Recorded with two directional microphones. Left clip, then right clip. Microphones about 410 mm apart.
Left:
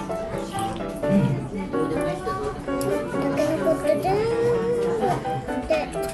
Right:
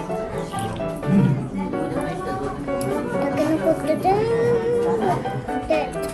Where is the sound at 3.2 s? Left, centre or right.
Centre.